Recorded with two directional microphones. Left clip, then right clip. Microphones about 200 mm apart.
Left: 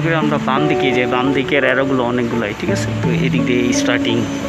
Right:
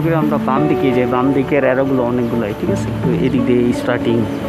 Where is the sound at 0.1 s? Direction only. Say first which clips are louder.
Left 1 dB; centre (ahead or behind).